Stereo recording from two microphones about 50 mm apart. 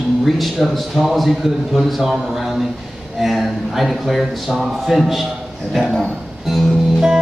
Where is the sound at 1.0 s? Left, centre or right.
Centre.